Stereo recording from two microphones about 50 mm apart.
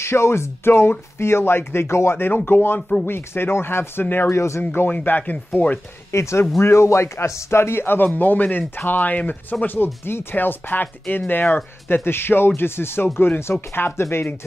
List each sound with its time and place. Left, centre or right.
0.0 s speech: left
2.1 s speech: left
4.0 s speech: left
4.3 s speech: left
4.8 s speech: left
6.1 s speech: left